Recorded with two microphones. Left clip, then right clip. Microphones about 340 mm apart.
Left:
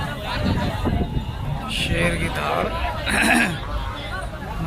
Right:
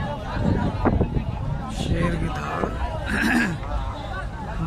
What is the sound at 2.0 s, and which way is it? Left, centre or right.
Speech, centre.